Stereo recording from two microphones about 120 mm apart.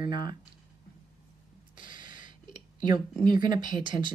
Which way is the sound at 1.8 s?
40° right (ahead or behind).